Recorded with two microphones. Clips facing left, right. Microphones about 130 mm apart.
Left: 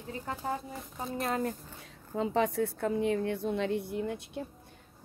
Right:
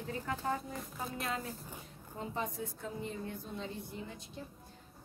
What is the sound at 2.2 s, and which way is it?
A woman's voice, 85° left.